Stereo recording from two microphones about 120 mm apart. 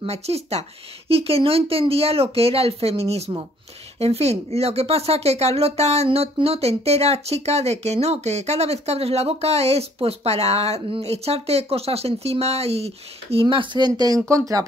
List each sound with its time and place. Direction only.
0.0 s speech: 60° right (ahead or behind); by 14.7 s 25° right (ahead or behind)